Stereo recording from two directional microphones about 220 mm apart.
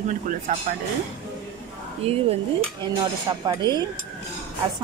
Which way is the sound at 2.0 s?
30° right (ahead or behind).